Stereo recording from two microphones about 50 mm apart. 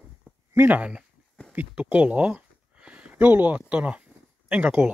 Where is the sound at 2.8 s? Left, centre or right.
Right.